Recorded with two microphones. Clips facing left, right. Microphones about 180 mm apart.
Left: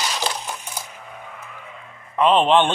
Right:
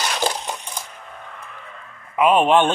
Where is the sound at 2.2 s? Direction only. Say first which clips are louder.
Right 1 dB; 10° right (ahead or behind).